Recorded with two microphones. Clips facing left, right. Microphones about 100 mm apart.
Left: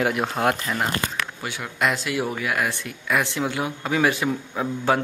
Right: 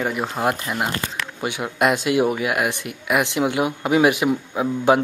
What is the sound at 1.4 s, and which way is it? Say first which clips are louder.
Speech: right 6 dB; 20° right (ahead or behind).